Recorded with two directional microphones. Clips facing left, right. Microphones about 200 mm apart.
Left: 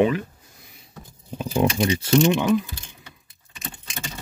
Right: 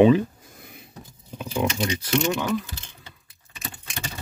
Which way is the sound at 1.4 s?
30° left (ahead or behind).